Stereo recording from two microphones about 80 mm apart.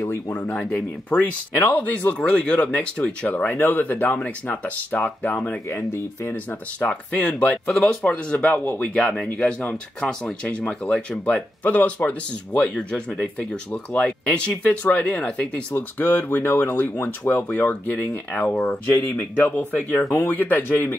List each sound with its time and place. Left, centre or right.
0.5 s speech: centre
1.6 s speech: left
5.7 s speech: left
6.3 s speech: centre
15.7 s speech: left